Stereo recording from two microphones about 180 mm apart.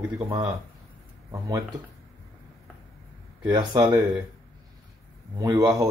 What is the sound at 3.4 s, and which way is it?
Speech, 25° right (ahead or behind).